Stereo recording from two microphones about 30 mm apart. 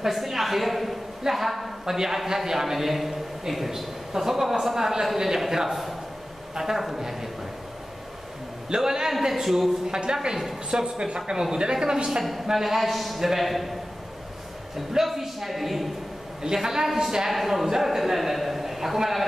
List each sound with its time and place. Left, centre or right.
0.0 s a woman's voice: centre
1.9 s a man's voice: centre
5.7 s a man's voice: centre
6.5 s a woman's voice: centre
8.6 s speech: centre
9.3 s a man's voice: centre
9.8 s a woman's voice: right
10.3 s a man's voice: centre
10.7 s speech: right
12.2 s a man's voice: centre
15.0 s a man's voice: centre
16.4 s a man's voice: centre